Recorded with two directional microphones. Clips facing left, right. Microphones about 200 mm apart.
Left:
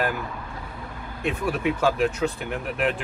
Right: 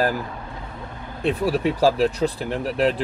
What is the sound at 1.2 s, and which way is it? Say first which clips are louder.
Speech: right 4 dB; 35° right (ahead or behind).